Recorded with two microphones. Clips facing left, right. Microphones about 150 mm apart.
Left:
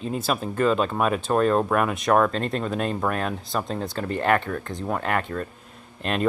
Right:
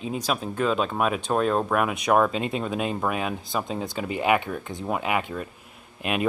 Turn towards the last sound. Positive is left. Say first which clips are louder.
# left 1 dB
turn(degrees=-10)  # may be behind; listen again after turning